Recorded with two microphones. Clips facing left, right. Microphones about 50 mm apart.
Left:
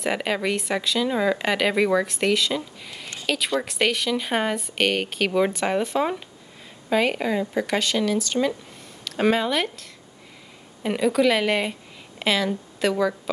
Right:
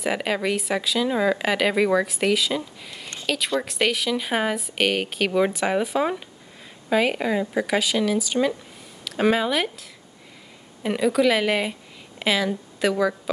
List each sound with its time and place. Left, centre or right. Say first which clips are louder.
0.0 s speech: even; centre